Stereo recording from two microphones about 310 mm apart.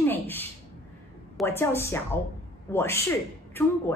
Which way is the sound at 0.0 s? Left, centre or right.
Centre.